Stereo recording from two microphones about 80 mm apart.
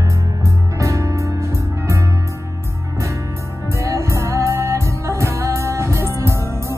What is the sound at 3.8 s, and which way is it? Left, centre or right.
Music, right.